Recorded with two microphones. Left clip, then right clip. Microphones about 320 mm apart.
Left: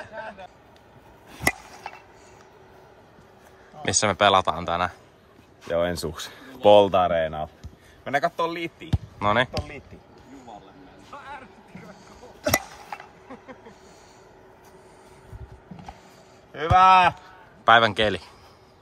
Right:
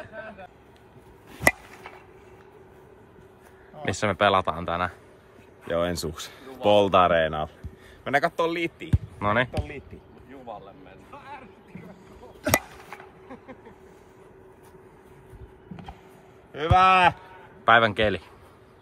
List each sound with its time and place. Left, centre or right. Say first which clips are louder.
0.0 s vehicle: left 3 dB; left
3.8 s a man's voice: left 3 dB; centre
11.1 s music: left 3 dB; left
16.5 s a man's voice: left 3 dB; centre